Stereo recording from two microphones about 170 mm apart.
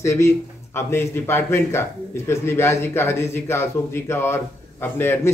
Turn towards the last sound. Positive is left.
turn(degrees=15)  # may be behind; listen again after turning